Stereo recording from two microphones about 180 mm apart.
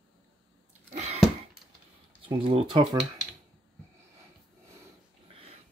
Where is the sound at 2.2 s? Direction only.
30° right (ahead or behind).